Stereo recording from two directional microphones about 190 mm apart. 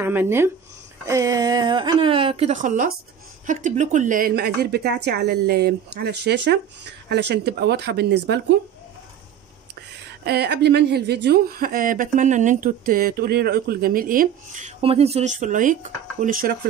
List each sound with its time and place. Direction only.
0.0 s a woman's voice: 10° right (ahead or behind); by 8.4 s 60° right (ahead or behind)
10.0 s a woman's voice: 60° right (ahead or behind)